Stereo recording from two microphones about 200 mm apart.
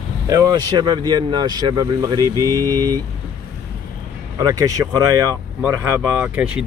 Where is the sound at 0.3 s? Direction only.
20° right (ahead or behind).